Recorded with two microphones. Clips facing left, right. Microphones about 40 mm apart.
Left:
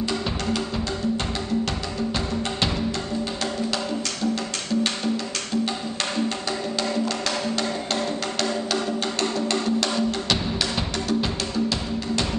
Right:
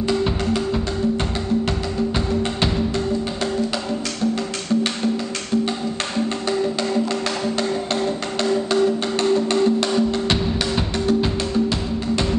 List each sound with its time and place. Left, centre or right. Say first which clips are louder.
7.5 s music: right 4 dB; right
9.5 s music: right 5 dB; right